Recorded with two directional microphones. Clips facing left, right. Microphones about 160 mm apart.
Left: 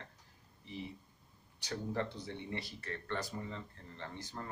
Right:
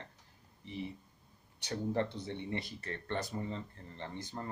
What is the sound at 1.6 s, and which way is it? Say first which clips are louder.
Speech: right 4 dB; 25° right (ahead or behind).